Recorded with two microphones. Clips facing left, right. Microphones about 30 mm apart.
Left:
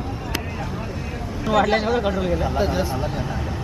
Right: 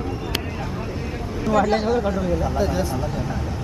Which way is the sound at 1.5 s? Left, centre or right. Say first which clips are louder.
Even; centre.